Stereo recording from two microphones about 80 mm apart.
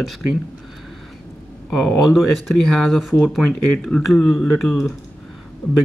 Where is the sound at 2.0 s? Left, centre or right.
Centre.